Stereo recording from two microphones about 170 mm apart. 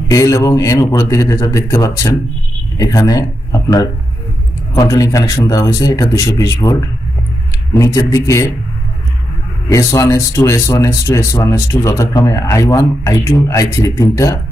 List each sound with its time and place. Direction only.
0.1 s speech: 20° left (ahead or behind)
9.7 s speech: 20° left (ahead or behind)